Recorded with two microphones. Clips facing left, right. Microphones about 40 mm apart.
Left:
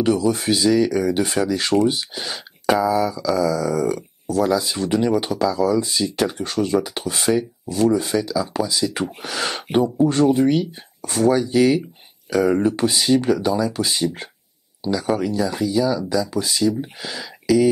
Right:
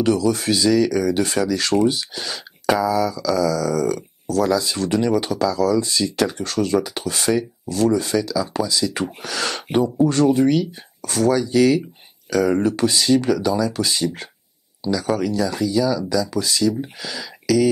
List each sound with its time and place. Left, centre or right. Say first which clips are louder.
0.0 s speech: even; centre
10.5 s speech: right 1 dB; left
16.5 s speech: even; centre